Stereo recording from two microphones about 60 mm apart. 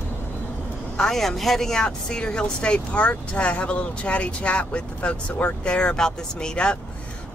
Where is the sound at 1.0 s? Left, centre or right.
Centre.